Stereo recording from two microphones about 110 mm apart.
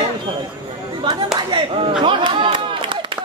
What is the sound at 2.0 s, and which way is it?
Speech, 45° right (ahead or behind).